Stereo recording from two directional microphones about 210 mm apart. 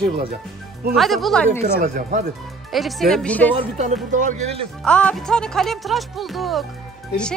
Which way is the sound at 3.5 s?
35° right (ahead or behind).